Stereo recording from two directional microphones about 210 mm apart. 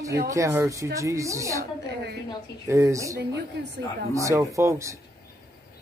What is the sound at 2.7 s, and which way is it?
Speech, 15° right (ahead or behind).